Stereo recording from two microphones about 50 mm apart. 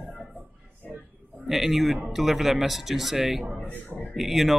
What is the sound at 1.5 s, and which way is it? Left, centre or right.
Speech, centre.